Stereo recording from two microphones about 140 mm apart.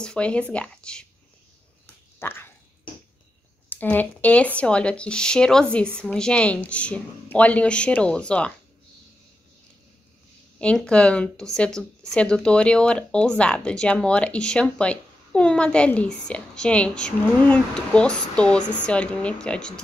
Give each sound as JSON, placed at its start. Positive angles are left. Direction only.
{"t": 0.0, "sound": "speech", "side_deg": 5}
{"t": 2.1, "sound": "a sound", "side_deg": 15}
{"t": 3.6, "sound": "speech", "side_deg": 15}
{"t": 10.6, "sound": "speech", "side_deg": 5}